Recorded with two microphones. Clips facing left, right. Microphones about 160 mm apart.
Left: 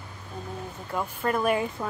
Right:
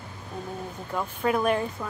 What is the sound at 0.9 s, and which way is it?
Speech, centre (ahead or behind).